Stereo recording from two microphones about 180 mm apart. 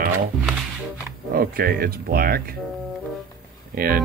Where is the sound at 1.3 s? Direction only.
55° right (ahead or behind).